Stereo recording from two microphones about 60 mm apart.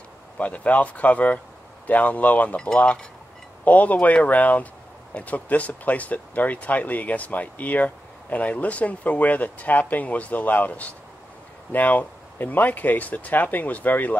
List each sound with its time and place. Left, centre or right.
0.4 s speech: left